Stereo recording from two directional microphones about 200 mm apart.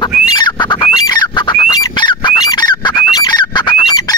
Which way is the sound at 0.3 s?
20° left (ahead or behind).